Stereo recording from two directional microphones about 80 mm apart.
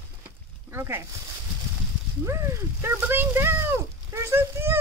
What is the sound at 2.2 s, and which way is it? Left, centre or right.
Speech, right.